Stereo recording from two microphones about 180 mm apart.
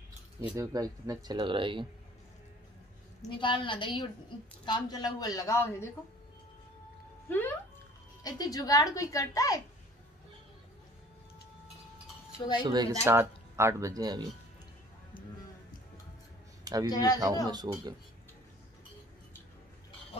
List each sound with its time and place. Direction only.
0.6 s speech: 20° right (ahead or behind)
3.3 s a child's voice: 25° left (ahead or behind)
7.2 s a child's voice: 10° left (ahead or behind)
12.6 s speech: 25° right (ahead or behind)
15.1 s music: 50° left (ahead or behind)
16.6 s speech: 20° right (ahead or behind)
16.9 s a child's voice: 20° left (ahead or behind)
17.5 s speech: 20° right (ahead or behind)